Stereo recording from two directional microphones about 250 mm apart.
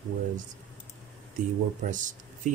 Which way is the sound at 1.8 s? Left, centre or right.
Right.